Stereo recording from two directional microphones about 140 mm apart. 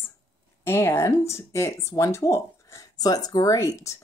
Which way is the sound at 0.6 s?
15° left (ahead or behind).